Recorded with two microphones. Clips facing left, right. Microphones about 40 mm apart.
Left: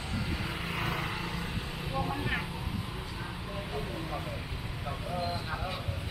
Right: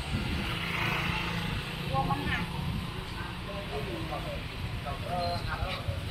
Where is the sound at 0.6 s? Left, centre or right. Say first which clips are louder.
Right 4 dB; right.